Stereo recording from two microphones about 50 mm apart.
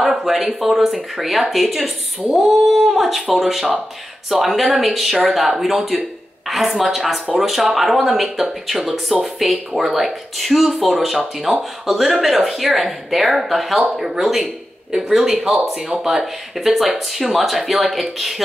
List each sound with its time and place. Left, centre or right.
0.2 s speech: centre